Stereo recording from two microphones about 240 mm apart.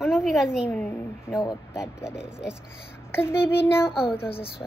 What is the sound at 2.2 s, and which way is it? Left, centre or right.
Speech, centre.